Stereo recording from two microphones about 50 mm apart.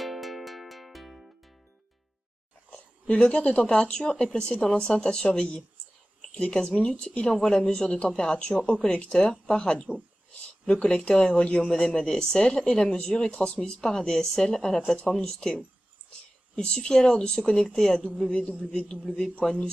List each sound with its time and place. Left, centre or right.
0.0 s music: centre
3.2 s speech: centre